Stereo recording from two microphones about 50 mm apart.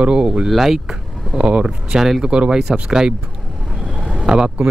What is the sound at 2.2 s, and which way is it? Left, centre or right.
Speech, centre.